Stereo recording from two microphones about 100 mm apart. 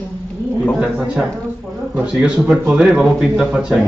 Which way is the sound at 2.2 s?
5° right (ahead or behind).